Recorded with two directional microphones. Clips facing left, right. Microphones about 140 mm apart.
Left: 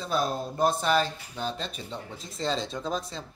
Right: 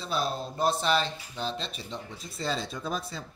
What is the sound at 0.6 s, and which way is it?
Speech, 10° left (ahead or behind).